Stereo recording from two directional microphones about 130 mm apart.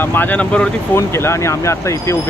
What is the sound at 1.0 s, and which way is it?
Speech, 20° left (ahead or behind).